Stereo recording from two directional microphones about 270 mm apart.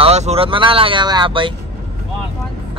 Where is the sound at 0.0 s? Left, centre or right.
Right.